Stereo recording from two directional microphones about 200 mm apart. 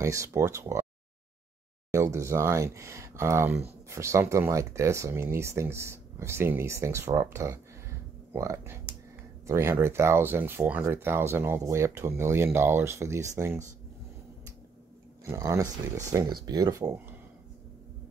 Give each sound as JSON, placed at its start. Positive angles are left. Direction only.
{"t": 0.0, "sound": "speech", "side_deg": -15}
{"t": 1.9, "sound": "speech", "side_deg": -15}
{"t": 15.2, "sound": "speech", "side_deg": -15}